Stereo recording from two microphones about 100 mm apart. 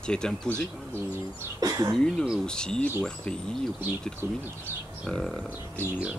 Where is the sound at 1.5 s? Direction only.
35° right (ahead or behind).